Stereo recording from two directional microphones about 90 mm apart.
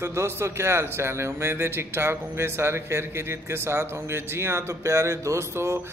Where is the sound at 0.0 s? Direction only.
30° right (ahead or behind).